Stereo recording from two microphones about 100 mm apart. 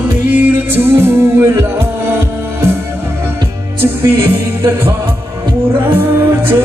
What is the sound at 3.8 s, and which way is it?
Music, 20° right (ahead or behind).